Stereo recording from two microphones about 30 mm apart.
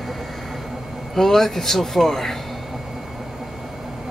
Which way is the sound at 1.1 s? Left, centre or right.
Centre.